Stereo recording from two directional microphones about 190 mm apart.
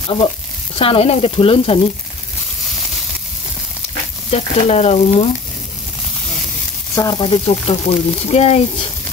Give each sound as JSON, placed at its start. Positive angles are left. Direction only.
{"t": 0.7, "sound": "speech", "side_deg": 30}
{"t": 4.3, "sound": "speech", "side_deg": 35}
{"t": 7.0, "sound": "speech", "side_deg": 20}